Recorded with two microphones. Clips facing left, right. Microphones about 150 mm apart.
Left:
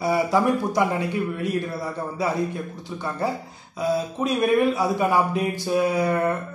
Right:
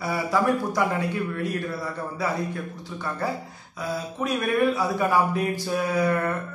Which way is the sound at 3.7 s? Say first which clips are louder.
Left 6 dB; 20° left (ahead or behind).